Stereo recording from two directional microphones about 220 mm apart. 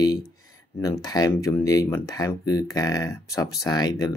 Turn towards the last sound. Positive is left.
turn(degrees=15)  # may be behind; listen again after turning